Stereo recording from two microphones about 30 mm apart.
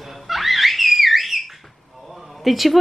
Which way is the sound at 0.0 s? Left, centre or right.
Centre.